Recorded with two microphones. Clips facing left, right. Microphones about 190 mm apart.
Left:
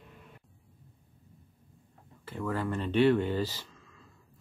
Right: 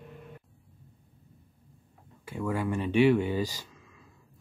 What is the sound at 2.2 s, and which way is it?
Speech, 15° right (ahead or behind).